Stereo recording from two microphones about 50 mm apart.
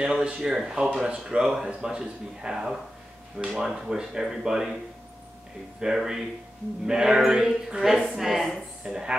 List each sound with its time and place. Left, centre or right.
0.0 s speech: centre
0.5 s speech: centre
5.8 s a woman's voice: centre
8.8 s speech: centre